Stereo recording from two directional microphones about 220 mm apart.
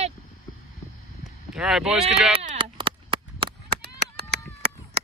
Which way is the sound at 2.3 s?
25° right (ahead or behind).